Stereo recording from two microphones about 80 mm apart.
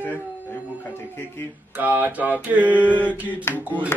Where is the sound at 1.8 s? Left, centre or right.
Right.